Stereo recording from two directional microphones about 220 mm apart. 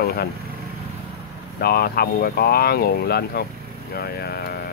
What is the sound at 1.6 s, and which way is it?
Speech, 45° left (ahead or behind).